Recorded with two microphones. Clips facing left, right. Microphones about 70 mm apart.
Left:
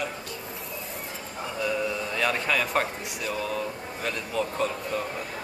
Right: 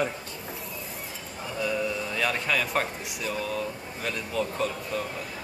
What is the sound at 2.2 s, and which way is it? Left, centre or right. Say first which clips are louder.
A man's voice: left 2 dB; centre.